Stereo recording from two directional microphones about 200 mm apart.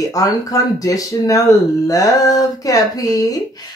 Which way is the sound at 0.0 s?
15° left (ahead or behind).